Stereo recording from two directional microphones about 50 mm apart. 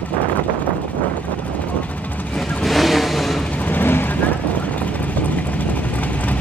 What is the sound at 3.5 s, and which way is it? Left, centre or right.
Vehicle, left.